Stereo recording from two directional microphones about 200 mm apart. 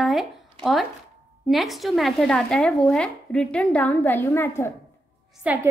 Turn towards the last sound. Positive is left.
turn(degrees=-10)  # may be behind; listen again after turning